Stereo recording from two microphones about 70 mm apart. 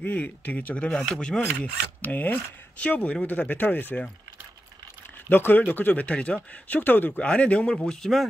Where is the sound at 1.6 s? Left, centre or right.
Left.